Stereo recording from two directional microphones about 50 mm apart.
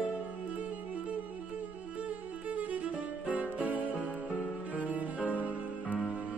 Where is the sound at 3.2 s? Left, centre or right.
Right.